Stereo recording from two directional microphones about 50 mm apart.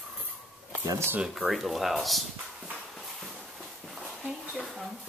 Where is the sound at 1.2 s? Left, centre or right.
Centre.